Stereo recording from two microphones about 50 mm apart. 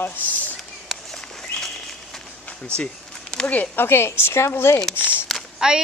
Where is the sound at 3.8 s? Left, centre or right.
Left.